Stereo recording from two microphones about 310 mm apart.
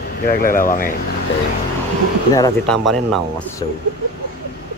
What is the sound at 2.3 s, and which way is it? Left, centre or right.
Speech, centre.